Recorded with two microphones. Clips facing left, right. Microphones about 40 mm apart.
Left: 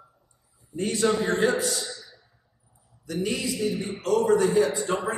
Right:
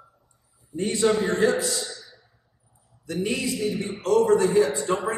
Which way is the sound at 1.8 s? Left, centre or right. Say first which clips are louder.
Right 1 dB; left.